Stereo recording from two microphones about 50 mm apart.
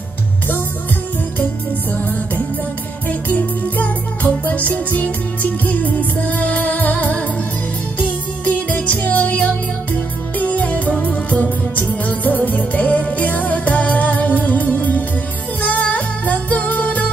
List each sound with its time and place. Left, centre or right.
3.1 s music: left
8.6 s music: left